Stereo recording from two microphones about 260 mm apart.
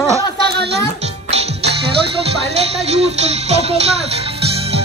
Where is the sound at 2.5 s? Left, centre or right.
Right.